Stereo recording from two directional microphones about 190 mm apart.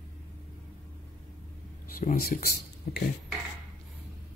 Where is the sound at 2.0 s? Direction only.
50° left (ahead or behind).